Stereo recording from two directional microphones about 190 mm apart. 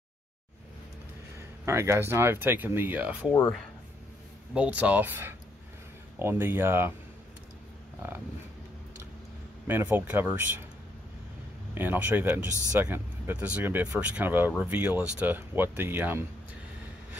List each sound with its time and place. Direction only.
1.7 s speech: 15° right (ahead or behind)
4.6 s speech: 5° right (ahead or behind)
9.7 s speech: 10° right (ahead or behind)
11.7 s speech: 10° right (ahead or behind)